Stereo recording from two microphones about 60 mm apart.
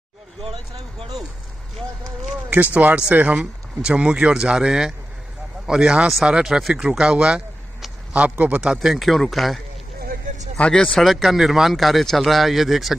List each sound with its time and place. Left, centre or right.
2.5 s a man's voice: right
3.3 s a man's voice: centre
8.9 s speech: centre
10.6 s speech: centre
11.1 s speech: centre